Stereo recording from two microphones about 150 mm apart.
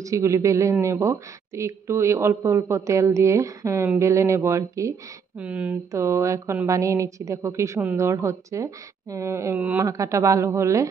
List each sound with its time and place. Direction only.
0.0 s a woman's voice: 20° right (ahead or behind)
5.4 s a woman's voice: 10° right (ahead or behind)